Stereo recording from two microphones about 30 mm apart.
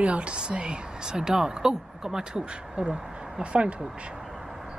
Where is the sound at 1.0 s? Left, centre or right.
Right.